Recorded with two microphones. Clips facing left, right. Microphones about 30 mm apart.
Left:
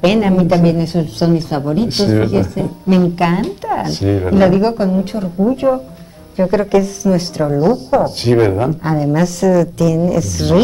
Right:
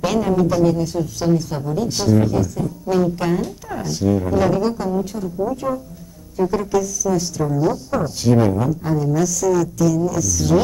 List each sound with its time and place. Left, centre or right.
0.0 s a woman's voice: left